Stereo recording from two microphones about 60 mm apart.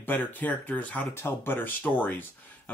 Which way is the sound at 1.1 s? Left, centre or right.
Left.